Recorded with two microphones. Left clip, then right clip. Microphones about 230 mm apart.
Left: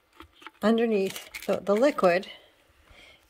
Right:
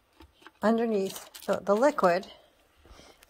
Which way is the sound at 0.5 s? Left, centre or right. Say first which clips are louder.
Left 2 dB; left.